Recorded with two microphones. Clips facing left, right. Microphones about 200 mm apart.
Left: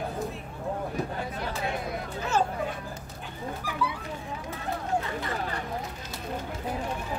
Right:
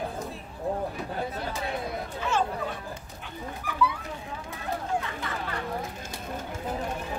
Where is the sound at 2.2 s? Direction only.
40° left (ahead or behind).